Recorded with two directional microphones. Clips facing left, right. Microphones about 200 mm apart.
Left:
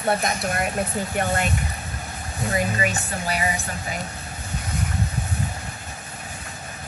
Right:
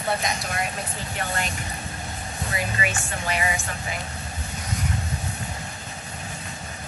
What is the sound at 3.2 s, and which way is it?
Speech, 40° left (ahead or behind).